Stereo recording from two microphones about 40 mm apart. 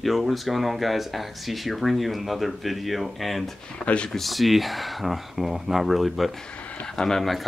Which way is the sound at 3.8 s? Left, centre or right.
Left.